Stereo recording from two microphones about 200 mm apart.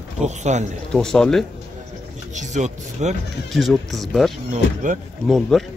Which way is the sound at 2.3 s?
35° right (ahead or behind).